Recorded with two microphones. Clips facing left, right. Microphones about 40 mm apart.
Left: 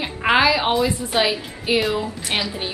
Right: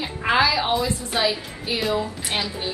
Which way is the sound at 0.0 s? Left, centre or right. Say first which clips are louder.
Left 3 dB; left.